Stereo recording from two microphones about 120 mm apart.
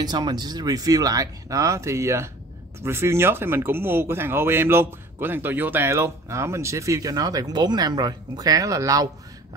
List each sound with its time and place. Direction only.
0.0 s speech: 35° right (ahead or behind)